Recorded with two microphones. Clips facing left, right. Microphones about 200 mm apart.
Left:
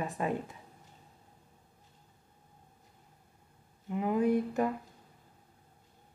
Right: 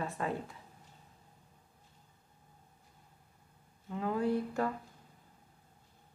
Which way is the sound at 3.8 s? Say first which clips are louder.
Left 4 dB; 15° left (ahead or behind).